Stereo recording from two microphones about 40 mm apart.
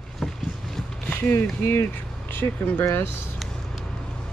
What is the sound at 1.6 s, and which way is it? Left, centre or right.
Speech, left.